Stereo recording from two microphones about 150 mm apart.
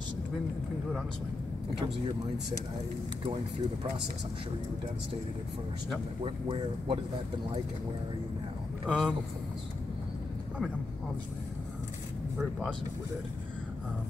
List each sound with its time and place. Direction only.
6.2 s speech: 40° right (ahead or behind)
8.8 s speech: centre (ahead or behind)
12.4 s speech: centre (ahead or behind)